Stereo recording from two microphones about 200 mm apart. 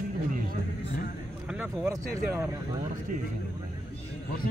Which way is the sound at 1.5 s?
5° right (ahead or behind).